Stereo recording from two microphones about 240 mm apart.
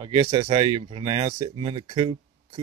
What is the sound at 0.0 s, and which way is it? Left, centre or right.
Speech, right.